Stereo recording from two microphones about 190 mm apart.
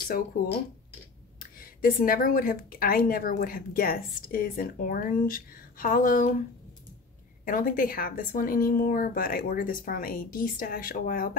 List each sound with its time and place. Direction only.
1.4 s a woman's voice: 50° left (ahead or behind)
7.4 s a woman's voice: 45° left (ahead or behind)